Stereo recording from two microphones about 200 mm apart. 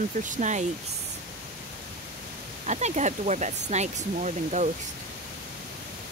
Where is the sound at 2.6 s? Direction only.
35° right (ahead or behind).